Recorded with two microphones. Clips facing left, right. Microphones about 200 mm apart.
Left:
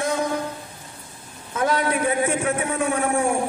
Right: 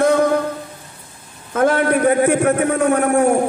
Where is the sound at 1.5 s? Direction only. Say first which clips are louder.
Right 6 dB; 50° right (ahead or behind).